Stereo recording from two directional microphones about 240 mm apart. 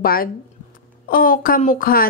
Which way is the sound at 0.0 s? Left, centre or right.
Left.